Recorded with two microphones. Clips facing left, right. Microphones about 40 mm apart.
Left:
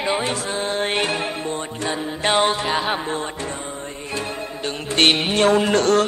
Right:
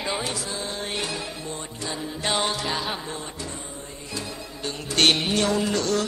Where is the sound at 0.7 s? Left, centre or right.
Left.